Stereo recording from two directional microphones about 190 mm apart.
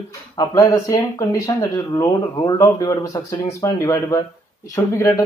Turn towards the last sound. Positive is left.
turn(degrees=15)  # may be behind; listen again after turning